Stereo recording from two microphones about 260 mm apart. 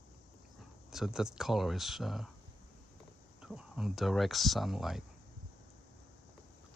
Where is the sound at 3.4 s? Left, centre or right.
Centre.